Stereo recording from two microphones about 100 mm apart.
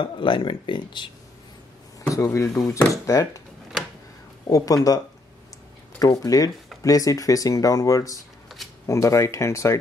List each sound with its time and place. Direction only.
0.0 s speech: 55° left (ahead or behind)
2.1 s speech: 30° left (ahead or behind)
4.5 s speech: 35° left (ahead or behind)